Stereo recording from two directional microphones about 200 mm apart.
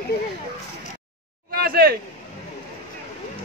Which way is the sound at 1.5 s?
50° right (ahead or behind).